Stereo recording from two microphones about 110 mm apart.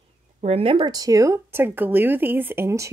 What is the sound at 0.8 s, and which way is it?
Speech, 35° right (ahead or behind).